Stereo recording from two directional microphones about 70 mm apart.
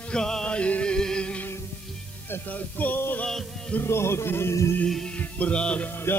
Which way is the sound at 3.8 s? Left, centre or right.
Left.